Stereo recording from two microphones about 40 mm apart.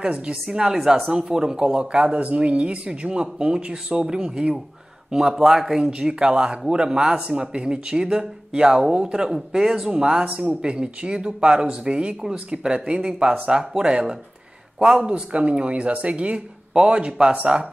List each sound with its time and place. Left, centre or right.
0.0 s speech: right
2.1 s speech: right; by 5.9 s centre
5.9 s speech: right
15.0 s speech: right
16.7 s speech: centre